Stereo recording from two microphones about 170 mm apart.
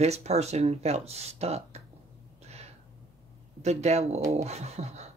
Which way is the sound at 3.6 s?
40° right (ahead or behind).